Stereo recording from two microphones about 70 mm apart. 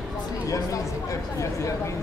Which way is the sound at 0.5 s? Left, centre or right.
Left.